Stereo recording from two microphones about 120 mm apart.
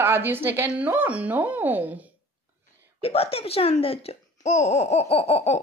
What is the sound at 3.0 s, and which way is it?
Speech, 55° left (ahead or behind).